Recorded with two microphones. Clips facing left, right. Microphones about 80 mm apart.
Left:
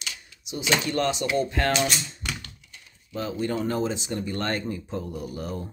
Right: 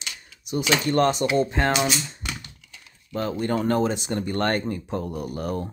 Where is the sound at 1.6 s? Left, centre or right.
Right.